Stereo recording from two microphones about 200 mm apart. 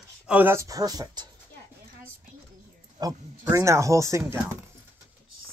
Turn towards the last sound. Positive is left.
turn(degrees=-15)  # may be behind; listen again after turning